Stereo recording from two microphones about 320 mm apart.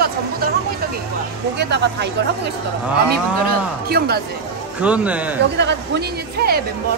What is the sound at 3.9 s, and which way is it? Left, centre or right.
Speech, right.